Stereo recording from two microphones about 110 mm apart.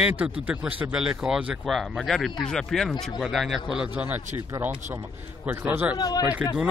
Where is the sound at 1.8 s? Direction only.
5° left (ahead or behind).